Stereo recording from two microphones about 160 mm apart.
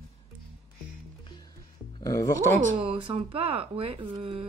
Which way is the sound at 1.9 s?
20° left (ahead or behind).